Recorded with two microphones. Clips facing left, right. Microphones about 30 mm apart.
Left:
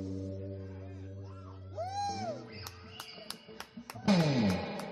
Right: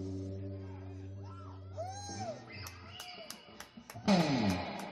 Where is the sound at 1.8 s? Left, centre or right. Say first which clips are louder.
Left 7 dB; left.